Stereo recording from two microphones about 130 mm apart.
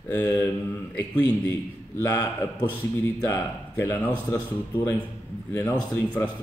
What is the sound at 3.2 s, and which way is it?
Speech, 20° left (ahead or behind).